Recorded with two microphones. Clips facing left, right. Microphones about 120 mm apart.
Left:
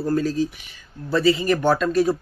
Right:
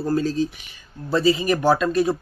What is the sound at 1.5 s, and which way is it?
Speech, 5° right (ahead or behind).